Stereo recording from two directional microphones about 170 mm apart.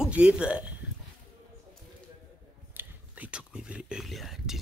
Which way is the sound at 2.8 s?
10° right (ahead or behind).